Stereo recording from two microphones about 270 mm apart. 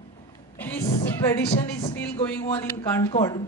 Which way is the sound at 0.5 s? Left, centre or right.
Centre.